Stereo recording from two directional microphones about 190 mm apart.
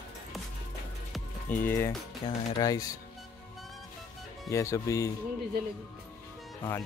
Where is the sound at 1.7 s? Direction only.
10° left (ahead or behind).